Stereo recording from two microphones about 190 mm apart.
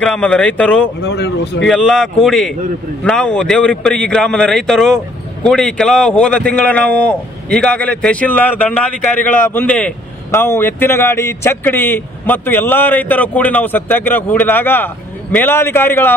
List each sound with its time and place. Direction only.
0.0 s a man's voice: 5° left (ahead or behind)
1.0 s a man's voice: 60° left (ahead or behind)
1.7 s a man's voice: centre (ahead or behind)